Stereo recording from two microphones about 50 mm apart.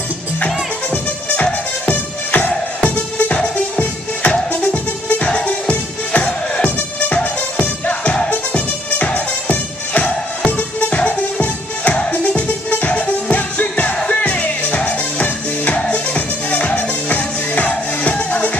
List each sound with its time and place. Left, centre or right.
1.3 s music: left